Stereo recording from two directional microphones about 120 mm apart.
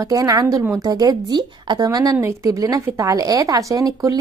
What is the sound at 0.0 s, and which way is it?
A woman's voice, 30° right (ahead or behind).